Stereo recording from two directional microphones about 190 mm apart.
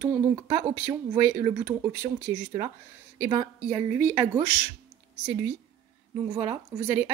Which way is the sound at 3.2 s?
15° right (ahead or behind).